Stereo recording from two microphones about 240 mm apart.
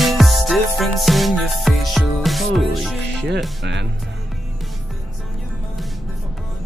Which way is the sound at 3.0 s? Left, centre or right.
Right.